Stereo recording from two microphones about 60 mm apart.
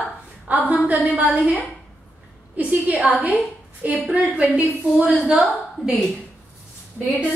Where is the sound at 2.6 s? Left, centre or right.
Right.